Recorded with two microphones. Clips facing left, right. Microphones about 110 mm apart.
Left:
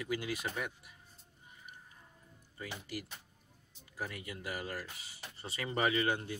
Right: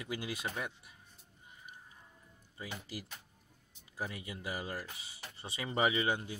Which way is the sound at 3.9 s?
20° right (ahead or behind).